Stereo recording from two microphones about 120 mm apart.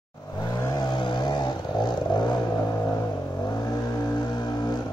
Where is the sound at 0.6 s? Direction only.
35° left (ahead or behind).